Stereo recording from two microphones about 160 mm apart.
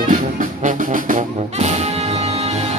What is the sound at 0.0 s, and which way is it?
Music, 55° right (ahead or behind).